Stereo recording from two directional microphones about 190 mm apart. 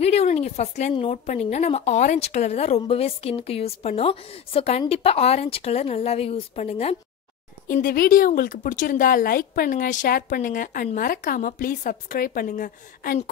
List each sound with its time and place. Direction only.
0.0 s a woman's voice: 35° left (ahead or behind)
7.6 s a woman's voice: 50° left (ahead or behind)